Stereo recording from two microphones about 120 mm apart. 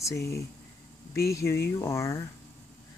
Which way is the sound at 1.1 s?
25° left (ahead or behind).